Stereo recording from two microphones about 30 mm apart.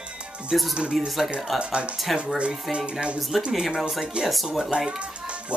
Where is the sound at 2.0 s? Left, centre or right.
Centre.